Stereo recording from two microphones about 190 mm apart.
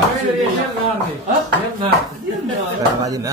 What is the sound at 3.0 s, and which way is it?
Speech, 20° right (ahead or behind).